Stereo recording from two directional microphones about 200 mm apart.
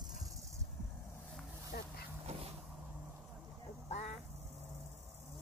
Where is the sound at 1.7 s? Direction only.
50° left (ahead or behind).